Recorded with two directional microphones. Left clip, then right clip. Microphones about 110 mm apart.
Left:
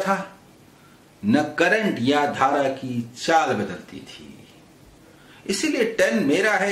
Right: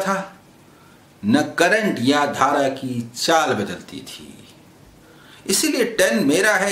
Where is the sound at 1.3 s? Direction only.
15° right (ahead or behind).